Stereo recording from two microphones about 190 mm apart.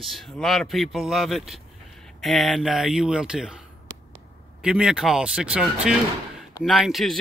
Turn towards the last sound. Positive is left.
turn(degrees=0)  # may be behind; listen again after turning